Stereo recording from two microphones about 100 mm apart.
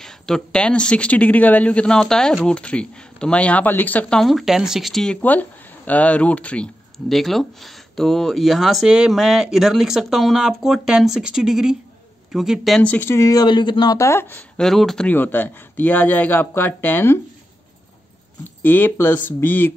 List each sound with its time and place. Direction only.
0.0 s speech: 5° left (ahead or behind)
4.2 s speech: centre (ahead or behind)
7.1 s speech: centre (ahead or behind)
12.8 s speech: 20° left (ahead or behind)
13.3 s speech: 45° left (ahead or behind)
13.9 s speech: 25° left (ahead or behind)
14.6 s speech: 5° left (ahead or behind)
15.0 s speech: 20° left (ahead or behind)
18.6 s speech: 20° left (ahead or behind)